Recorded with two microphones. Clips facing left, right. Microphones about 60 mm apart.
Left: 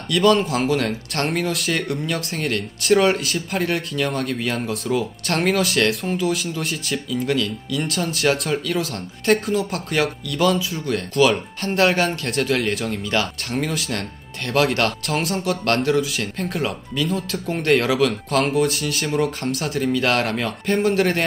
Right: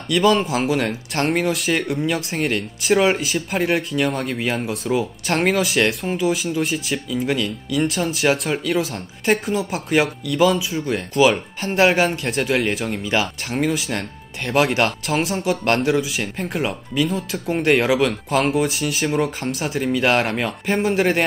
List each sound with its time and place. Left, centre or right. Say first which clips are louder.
0.1 s speech: even; centre
4.3 s speech: right 1 dB; centre
15.0 s speech: right 2 dB; centre
18.0 s speech: even; centre